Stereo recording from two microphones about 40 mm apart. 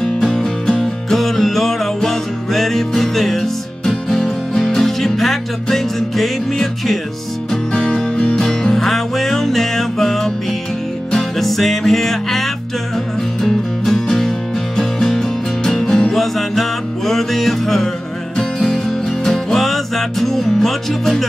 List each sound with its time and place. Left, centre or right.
0.0 s music: centre
8.2 s music: left
8.5 s music: centre